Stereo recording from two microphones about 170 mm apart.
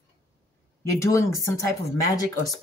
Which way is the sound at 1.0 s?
15° left (ahead or behind).